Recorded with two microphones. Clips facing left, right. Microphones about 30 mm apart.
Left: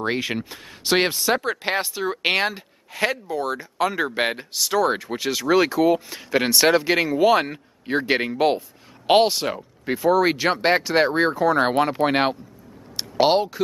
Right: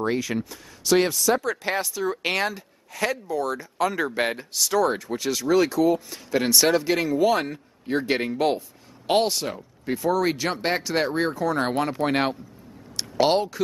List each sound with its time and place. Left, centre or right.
0.0 s speech: left; by 13.6 s centre